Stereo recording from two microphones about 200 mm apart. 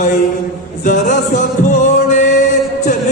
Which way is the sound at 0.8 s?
40° left (ahead or behind).